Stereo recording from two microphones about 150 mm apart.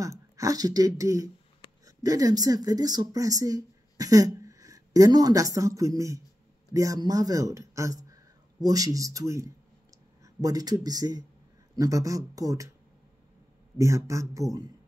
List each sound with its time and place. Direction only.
0.0 s speech: 20° right (ahead or behind)
13.7 s speech: 20° right (ahead or behind)